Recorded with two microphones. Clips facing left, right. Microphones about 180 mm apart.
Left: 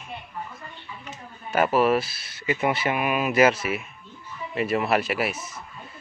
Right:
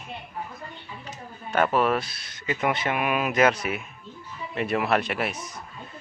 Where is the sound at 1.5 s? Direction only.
5° left (ahead or behind).